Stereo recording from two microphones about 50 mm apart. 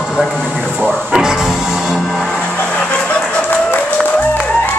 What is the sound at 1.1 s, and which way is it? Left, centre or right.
Music, centre.